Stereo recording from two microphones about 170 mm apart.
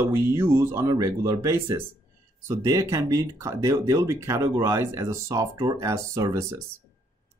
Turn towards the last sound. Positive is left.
turn(degrees=-20)  # may be behind; listen again after turning